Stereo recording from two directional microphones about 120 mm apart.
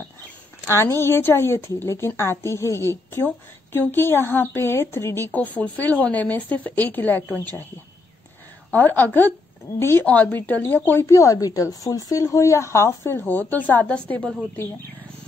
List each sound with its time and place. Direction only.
0.7 s a woman's voice: 20° left (ahead or behind)
8.7 s a woman's voice: 15° left (ahead or behind)